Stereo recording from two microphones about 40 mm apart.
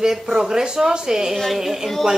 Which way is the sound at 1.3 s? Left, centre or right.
Centre.